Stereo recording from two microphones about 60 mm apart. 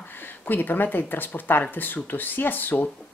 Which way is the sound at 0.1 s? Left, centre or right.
Left.